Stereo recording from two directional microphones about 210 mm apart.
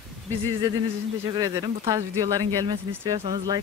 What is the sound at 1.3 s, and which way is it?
Speech, 15° right (ahead or behind).